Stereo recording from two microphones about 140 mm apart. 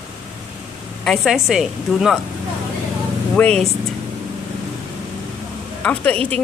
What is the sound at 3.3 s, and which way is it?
Speech, 5° left (ahead or behind).